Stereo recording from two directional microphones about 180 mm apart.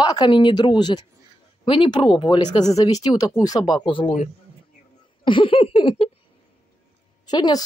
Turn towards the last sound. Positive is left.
turn(degrees=20)  # may be behind; listen again after turning